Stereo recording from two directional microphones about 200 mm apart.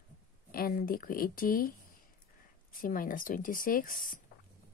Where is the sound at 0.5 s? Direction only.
45° left (ahead or behind).